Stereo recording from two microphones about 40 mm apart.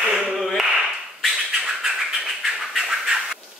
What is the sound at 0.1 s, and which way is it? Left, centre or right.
Clapping, centre.